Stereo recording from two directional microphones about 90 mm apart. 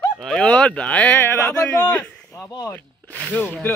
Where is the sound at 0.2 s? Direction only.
10° left (ahead or behind).